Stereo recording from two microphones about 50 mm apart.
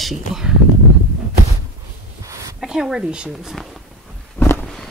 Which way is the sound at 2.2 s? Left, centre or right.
Right.